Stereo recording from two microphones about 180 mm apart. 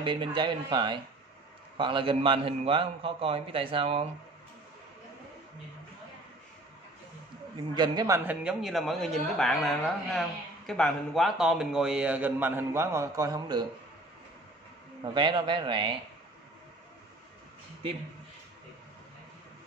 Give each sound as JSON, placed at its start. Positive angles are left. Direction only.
{"t": 0.0, "sound": "a man's voice", "side_deg": -25}
{"t": 7.7, "sound": "speech", "side_deg": -25}
{"t": 8.3, "sound": "a man's voice", "side_deg": -5}
{"t": 15.1, "sound": "speech", "side_deg": -25}